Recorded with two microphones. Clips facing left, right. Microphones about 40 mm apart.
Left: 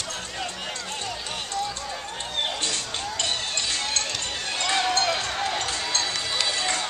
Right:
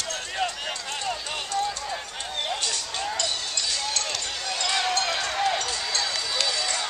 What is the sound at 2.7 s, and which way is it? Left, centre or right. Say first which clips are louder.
Run: right 1 dB; left.